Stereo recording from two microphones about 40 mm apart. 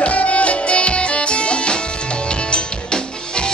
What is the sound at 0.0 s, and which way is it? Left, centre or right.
Music, left.